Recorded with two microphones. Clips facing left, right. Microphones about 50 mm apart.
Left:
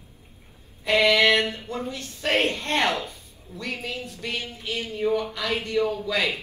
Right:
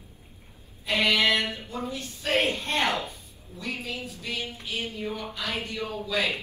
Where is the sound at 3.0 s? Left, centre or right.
Left.